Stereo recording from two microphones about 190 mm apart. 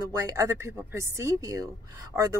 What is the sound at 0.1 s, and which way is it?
A woman's voice, 15° right (ahead or behind).